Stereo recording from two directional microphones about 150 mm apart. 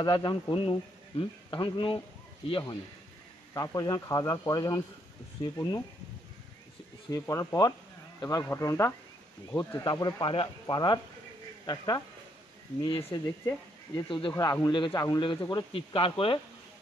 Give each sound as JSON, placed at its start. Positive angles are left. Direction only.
{"t": 0.0, "sound": "speech", "side_deg": 30}
{"t": 3.5, "sound": "speech", "side_deg": 25}
{"t": 7.1, "sound": "speech", "side_deg": 20}
{"t": 14.3, "sound": "speech", "side_deg": 20}